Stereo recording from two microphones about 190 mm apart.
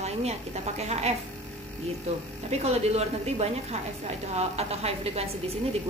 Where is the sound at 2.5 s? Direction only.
35° right (ahead or behind).